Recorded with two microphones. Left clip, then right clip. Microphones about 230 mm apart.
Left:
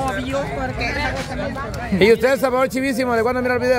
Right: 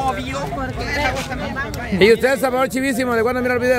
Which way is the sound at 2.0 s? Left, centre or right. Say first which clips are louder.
Right 1 dB; centre.